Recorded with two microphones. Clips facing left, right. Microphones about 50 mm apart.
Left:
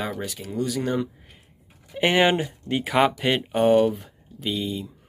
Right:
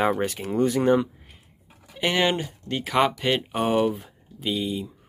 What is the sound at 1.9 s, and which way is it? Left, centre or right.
Speech, left.